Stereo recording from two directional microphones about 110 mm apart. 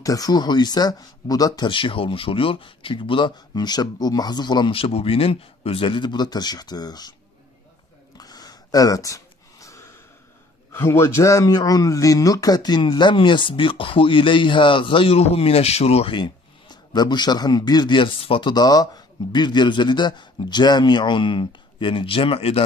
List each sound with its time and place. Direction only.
0.0 s speech: 35° left (ahead or behind)
1.7 s a man's voice: 55° left (ahead or behind)
4.7 s a man's voice: 60° left (ahead or behind); by 7.2 s 40° left (ahead or behind)
8.2 s a sound: 35° left (ahead or behind)
10.7 s a man's voice: 25° left (ahead or behind); by 18.5 s 55° left (ahead or behind)
18.5 s a man's voice: 35° left (ahead or behind); by 22.6 s 60° left (ahead or behind)